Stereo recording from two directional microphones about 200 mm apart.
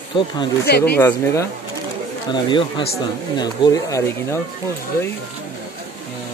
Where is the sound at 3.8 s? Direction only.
15° left (ahead or behind).